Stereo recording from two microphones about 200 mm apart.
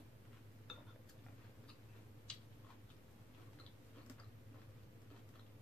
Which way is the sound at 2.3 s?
5° left (ahead or behind).